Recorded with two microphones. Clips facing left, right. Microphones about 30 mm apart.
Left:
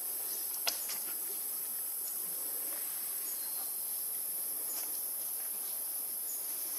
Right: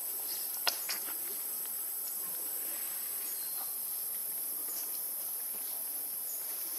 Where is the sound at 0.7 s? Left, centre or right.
Right.